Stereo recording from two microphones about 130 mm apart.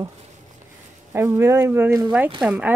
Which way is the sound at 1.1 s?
20° right (ahead or behind).